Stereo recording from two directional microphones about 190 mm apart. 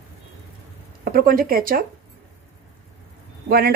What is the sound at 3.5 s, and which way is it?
Speech, 55° right (ahead or behind).